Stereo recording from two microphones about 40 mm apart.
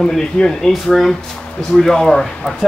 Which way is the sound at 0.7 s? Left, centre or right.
Centre.